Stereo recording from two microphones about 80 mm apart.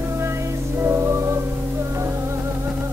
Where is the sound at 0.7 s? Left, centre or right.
Right.